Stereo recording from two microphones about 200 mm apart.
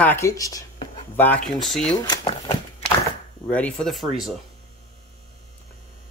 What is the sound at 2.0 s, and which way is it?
Speech, 20° left (ahead or behind).